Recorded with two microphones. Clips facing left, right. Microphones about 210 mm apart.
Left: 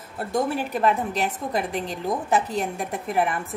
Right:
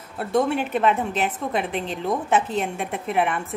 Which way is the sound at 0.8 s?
Centre (ahead or behind).